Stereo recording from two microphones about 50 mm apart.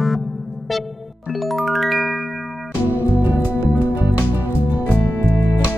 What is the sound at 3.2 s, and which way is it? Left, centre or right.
Music, right.